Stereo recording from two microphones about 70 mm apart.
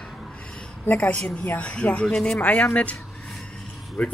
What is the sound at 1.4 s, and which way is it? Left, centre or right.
Speech, left.